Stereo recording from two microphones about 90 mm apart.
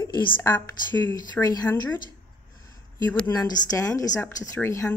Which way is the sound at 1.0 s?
45° left (ahead or behind).